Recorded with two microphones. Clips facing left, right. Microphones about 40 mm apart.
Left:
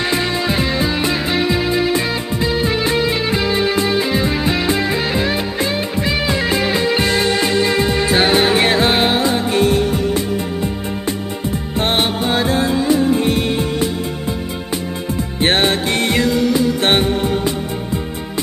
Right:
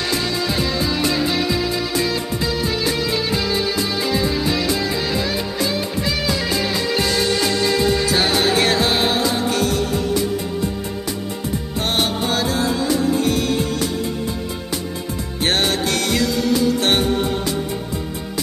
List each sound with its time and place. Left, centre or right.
0.1 s music: left
11.8 s music: left
15.4 s music: left